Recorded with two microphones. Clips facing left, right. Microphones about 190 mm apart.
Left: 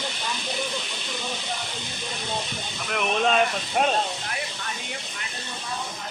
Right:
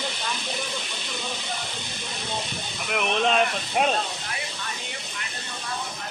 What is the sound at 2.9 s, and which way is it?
Speech, centre (ahead or behind).